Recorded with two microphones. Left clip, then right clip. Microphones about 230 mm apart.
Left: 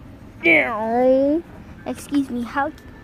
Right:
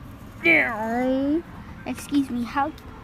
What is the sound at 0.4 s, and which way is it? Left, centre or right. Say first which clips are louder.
A woman's voice: left 3 dB; centre.